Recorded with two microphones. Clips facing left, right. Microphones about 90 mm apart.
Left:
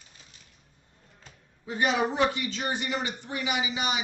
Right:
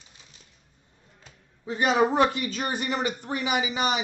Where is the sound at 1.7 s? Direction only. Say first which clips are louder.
Right 4 dB; 35° right (ahead or behind).